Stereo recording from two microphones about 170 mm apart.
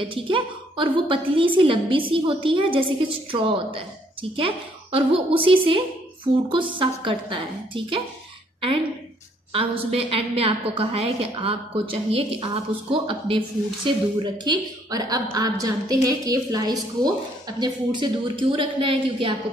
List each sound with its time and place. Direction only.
0.0 s a woman's voice: 30° right (ahead or behind)